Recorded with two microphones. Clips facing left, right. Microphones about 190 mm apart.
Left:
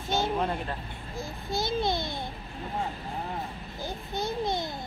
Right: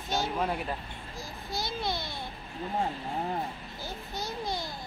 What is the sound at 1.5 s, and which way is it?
Speech, 25° left (ahead or behind).